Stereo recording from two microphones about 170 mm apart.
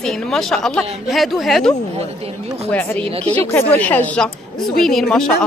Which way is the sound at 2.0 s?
35° right (ahead or behind).